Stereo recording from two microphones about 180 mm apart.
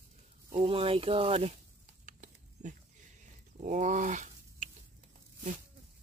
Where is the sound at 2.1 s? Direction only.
45° right (ahead or behind).